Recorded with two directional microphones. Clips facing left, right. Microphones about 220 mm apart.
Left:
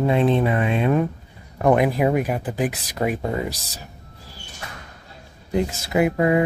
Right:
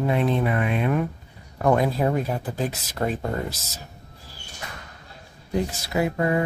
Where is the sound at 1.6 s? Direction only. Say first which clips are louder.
Left 3 dB; 15° left (ahead or behind).